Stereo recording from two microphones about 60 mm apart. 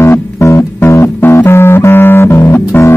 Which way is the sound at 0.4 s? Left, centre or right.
Left.